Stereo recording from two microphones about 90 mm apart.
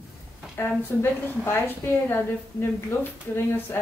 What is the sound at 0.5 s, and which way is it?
A woman's voice, 25° left (ahead or behind).